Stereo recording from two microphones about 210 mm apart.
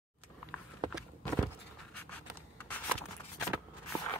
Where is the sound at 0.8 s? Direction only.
20° right (ahead or behind).